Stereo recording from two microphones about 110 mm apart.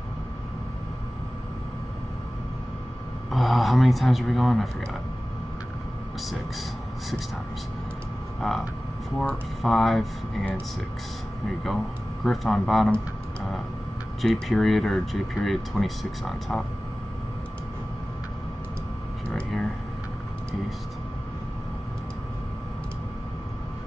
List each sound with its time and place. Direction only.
3.3 s speech: centre (ahead or behind)
8.4 s speech: centre (ahead or behind)
12.3 s speech: centre (ahead or behind)
14.2 s speech: 5° left (ahead or behind)
19.2 s a sound: 10° left (ahead or behind)